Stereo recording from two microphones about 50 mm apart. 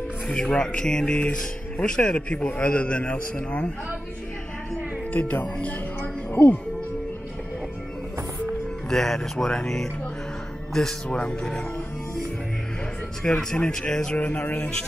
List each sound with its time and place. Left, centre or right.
0.3 s a man's voice: centre
5.1 s speech: left
8.9 s speech: centre
11.1 s a man's voice: left
13.2 s speech: centre
14.1 s a man's voice: left